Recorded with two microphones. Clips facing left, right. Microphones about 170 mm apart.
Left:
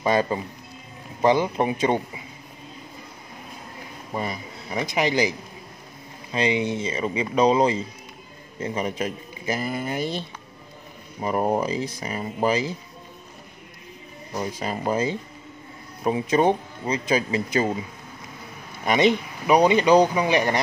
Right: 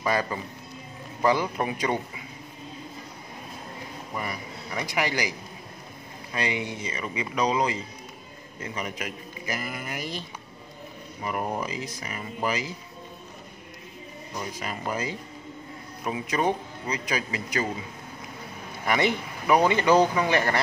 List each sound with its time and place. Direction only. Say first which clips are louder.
0.0 s speech: left 5 dB; 25° left (ahead or behind)
4.1 s speech: left 5 dB; 25° left (ahead or behind)
6.3 s speech: left 7 dB; 20° left (ahead or behind)
14.3 s speech: left 6 dB; 30° left (ahead or behind)
18.9 s speech: left 5 dB; 20° left (ahead or behind)